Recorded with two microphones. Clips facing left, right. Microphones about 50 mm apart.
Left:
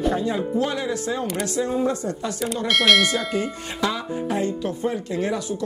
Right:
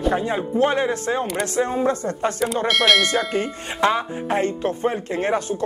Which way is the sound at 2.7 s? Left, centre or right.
Centre.